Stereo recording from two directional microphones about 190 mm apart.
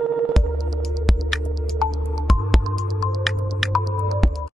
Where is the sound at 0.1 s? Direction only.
Centre (ahead or behind).